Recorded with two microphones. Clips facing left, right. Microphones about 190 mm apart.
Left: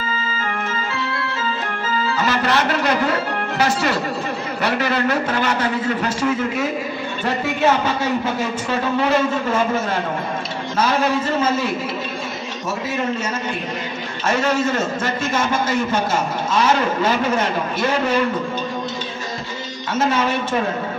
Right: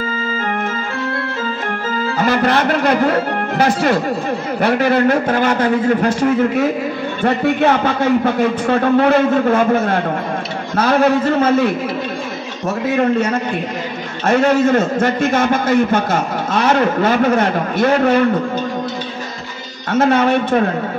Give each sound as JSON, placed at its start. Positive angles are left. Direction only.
{"t": 1.9, "sound": "a man's voice", "side_deg": -55}
{"t": 19.9, "sound": "a man's voice", "side_deg": -60}